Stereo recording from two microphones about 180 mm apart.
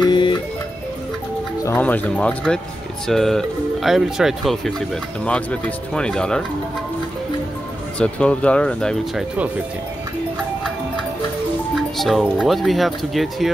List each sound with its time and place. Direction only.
0.0 s music: 25° left (ahead or behind)
1.6 s speech: 10° left (ahead or behind)
8.0 s speech: 5° left (ahead or behind)
11.7 s speech: centre (ahead or behind)